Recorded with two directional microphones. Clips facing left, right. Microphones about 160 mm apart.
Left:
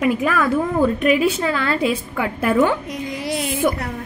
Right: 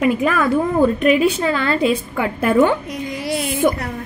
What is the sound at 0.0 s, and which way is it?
A woman's voice, centre (ahead or behind).